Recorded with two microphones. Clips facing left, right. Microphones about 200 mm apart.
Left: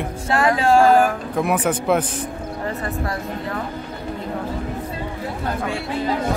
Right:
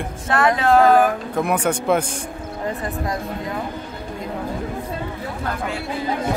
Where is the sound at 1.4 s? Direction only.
5° left (ahead or behind).